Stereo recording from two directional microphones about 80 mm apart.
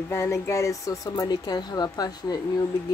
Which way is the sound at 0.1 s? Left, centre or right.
Left.